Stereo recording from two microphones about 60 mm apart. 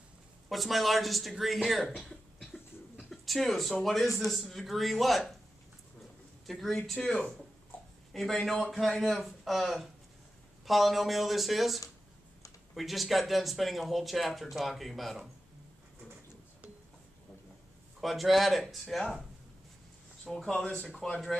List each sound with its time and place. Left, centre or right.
0.5 s speech: centre
1.9 s cough: centre
3.0 s speech: centre
6.4 s speech: centre
18.0 s speech: centre
20.2 s speech: centre
20.6 s speech: centre